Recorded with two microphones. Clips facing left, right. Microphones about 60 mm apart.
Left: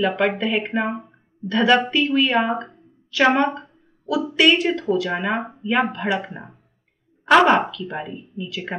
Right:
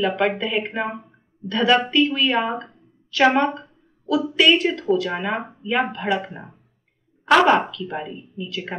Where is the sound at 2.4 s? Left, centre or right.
Centre.